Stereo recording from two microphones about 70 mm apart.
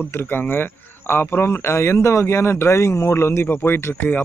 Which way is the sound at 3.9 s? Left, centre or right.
Left.